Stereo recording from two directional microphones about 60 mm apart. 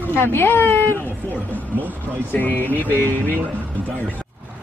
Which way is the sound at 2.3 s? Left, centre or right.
Left.